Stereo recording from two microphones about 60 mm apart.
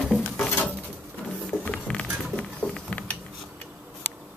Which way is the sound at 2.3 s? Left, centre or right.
Centre.